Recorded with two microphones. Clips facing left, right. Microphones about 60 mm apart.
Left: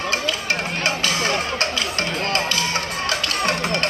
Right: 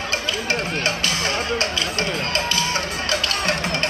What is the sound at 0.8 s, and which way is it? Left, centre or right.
Music, left.